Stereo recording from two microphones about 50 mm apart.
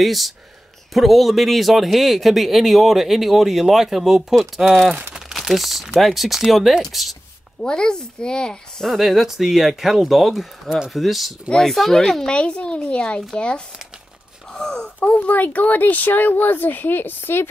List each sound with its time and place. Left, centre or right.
0.0 s speech: centre
7.6 s speech: centre
8.9 s speech: centre
12.4 s speech: left
14.5 s wail: centre
15.0 s speech: left